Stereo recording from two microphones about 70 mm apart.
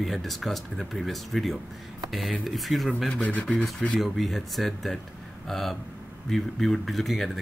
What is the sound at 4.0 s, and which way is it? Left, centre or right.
Speech, centre.